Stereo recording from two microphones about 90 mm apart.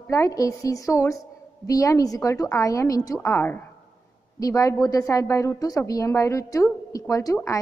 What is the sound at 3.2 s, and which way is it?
Speech, 25° left (ahead or behind).